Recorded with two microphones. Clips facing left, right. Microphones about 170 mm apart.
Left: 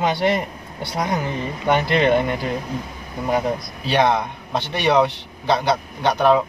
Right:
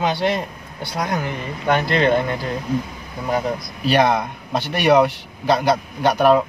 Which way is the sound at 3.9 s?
5° right (ahead or behind).